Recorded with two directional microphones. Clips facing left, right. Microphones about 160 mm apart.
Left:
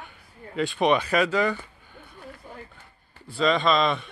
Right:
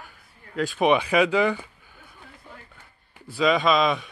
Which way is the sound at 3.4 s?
Centre (ahead or behind).